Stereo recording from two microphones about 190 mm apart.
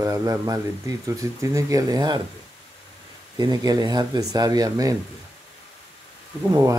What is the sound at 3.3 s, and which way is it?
Speech, 20° right (ahead or behind).